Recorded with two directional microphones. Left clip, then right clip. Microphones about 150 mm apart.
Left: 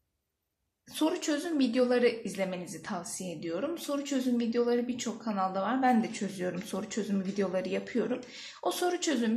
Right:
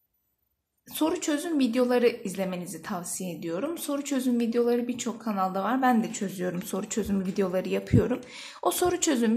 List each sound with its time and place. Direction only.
0.9 s a woman's voice: 45° right (ahead or behind)